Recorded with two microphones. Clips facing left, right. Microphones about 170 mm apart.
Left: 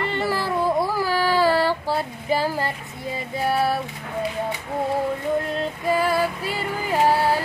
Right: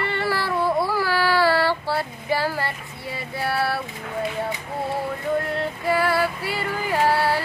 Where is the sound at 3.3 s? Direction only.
15° left (ahead or behind).